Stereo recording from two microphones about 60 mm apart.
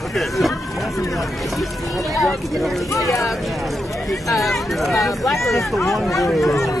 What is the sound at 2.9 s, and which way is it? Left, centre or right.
Speech, left.